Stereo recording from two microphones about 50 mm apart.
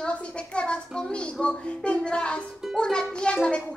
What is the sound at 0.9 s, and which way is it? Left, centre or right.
A woman's voice, centre.